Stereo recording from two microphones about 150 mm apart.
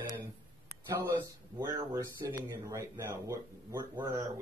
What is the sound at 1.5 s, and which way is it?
Speech, 25° right (ahead or behind).